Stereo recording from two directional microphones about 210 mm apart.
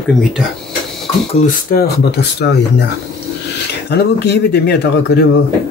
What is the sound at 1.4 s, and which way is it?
Speech, 45° left (ahead or behind).